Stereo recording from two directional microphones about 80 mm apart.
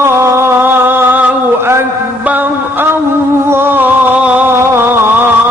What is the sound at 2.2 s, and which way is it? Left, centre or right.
Music, right.